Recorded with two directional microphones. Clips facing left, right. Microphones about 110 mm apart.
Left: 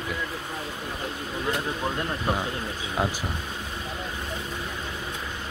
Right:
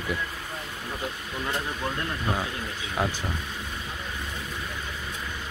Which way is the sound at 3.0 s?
20° left (ahead or behind).